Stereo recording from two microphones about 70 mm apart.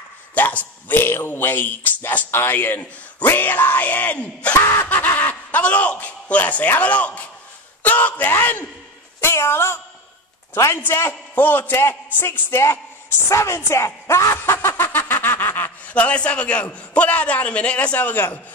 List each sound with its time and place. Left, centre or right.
0.3 s speech: left
4.8 s speech: left
7.8 s a sound: left
9.2 s a man's voice: left
11.0 s a man's voice: left
13.7 s snicker: left; by 16.6 s centre
16.9 s speech: centre